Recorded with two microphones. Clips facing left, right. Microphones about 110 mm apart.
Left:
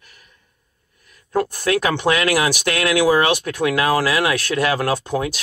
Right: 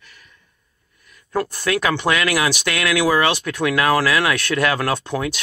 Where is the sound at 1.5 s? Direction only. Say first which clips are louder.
Left 1 dB; 45° left (ahead or behind).